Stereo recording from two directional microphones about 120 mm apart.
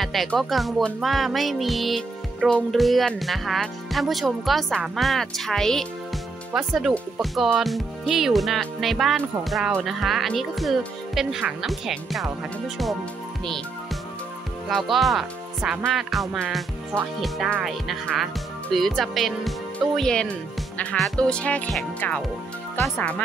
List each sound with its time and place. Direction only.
0.0 s music: centre (ahead or behind)
14.7 s speech: centre (ahead or behind)
15.9 s music: centre (ahead or behind)
22.9 s speech: 10° left (ahead or behind)